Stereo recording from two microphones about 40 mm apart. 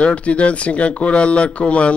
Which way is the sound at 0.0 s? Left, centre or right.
Left.